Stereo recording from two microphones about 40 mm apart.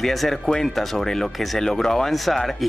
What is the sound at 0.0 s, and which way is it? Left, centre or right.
Speech, centre.